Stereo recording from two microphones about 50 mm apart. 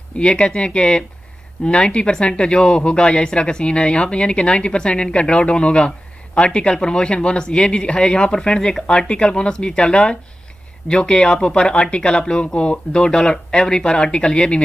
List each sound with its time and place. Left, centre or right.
0.2 s speech: centre